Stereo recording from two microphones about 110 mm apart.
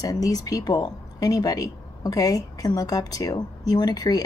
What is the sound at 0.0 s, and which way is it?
Speech, 35° left (ahead or behind).